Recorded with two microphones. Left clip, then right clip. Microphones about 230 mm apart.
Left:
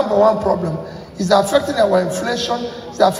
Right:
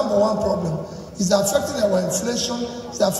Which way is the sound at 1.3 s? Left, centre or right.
Centre.